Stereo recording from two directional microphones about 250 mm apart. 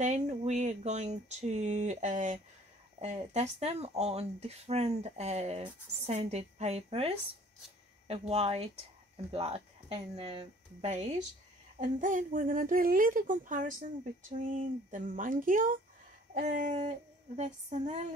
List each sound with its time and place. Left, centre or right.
0.0 s a woman's voice: right